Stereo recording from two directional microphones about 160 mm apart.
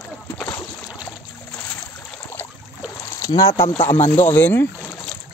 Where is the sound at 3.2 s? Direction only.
20° left (ahead or behind).